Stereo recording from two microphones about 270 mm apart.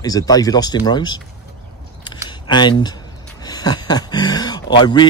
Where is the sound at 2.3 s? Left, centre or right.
Centre.